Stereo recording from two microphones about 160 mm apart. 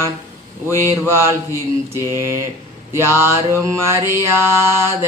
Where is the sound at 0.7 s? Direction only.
15° right (ahead or behind).